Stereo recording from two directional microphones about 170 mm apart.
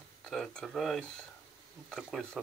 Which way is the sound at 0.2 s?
5° left (ahead or behind).